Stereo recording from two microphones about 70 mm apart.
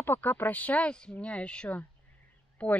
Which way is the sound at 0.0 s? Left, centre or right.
Left.